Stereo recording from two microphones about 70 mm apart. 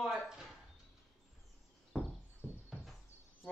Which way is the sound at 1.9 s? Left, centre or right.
Centre.